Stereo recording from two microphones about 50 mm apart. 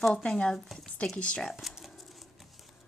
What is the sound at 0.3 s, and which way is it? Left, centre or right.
Speech, centre.